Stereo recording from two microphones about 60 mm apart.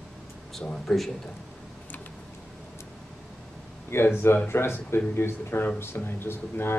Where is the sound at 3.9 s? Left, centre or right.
Left.